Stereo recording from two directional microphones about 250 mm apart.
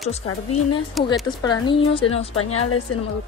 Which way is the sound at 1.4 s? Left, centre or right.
Centre.